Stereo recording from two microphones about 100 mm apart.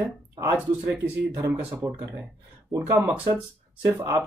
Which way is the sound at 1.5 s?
15° right (ahead or behind).